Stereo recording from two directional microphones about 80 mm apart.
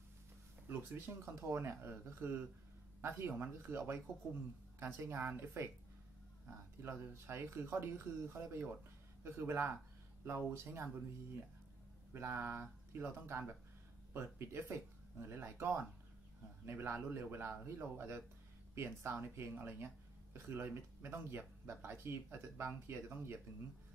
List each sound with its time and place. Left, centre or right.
0.7 s speech: right
6.8 s speech: right
12.1 s speech: right